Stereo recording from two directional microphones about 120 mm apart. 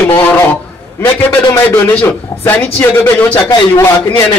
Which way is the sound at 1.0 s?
15° left (ahead or behind).